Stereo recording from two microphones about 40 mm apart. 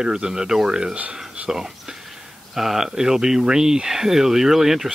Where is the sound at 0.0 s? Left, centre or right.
Centre.